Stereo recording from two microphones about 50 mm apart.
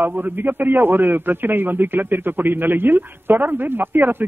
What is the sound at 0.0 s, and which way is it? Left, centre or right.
Speech, right.